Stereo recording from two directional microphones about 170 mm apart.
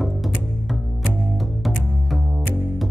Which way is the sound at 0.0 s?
Centre (ahead or behind).